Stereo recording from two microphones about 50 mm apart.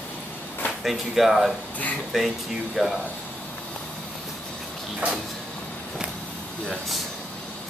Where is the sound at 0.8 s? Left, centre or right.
Centre.